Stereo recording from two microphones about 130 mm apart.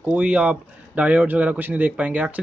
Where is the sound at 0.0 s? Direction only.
10° right (ahead or behind).